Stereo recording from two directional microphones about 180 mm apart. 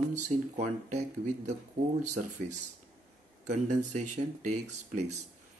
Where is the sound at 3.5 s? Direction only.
40° right (ahead or behind).